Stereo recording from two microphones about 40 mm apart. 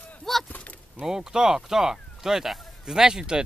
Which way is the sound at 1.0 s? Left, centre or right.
Centre.